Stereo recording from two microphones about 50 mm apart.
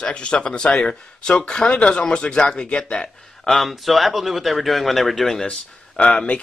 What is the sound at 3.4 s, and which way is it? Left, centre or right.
A man's voice, centre.